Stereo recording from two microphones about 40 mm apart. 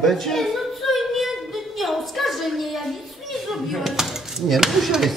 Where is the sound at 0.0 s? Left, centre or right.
Centre.